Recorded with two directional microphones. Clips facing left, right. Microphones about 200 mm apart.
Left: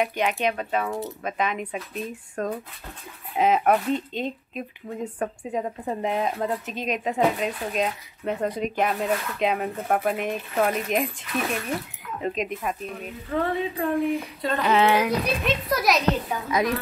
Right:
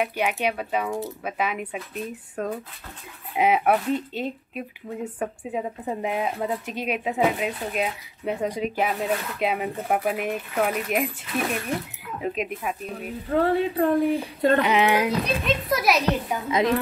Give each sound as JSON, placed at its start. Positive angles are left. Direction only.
{"t": 0.0, "sound": "speech", "side_deg": -10}
{"t": 12.2, "sound": "speech", "side_deg": -5}
{"t": 13.3, "sound": "speech", "side_deg": -35}
{"t": 14.4, "sound": "a sound", "side_deg": -55}
{"t": 14.7, "sound": "speech", "side_deg": -15}
{"t": 15.4, "sound": "speech", "side_deg": 0}
{"t": 16.4, "sound": "a woman's voice", "side_deg": -25}